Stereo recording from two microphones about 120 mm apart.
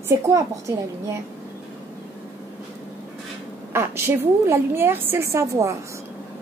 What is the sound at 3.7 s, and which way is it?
A woman's voice, 20° right (ahead or behind).